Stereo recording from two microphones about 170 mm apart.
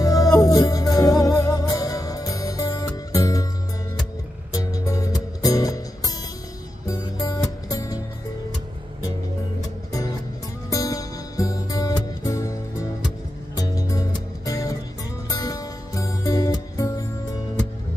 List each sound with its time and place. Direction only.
0.0 s music: 20° left (ahead or behind)
4.6 s music: 20° left (ahead or behind)
10.7 s music: 20° left (ahead or behind)